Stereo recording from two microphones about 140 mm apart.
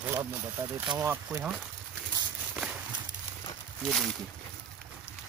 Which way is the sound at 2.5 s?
5° right (ahead or behind).